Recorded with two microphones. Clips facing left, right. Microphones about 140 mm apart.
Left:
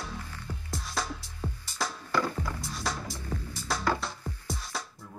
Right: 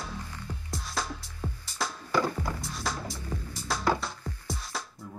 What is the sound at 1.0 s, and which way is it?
Music, centre (ahead or behind).